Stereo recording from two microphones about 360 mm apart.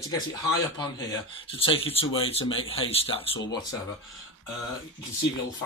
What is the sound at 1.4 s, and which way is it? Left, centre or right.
Speech, centre.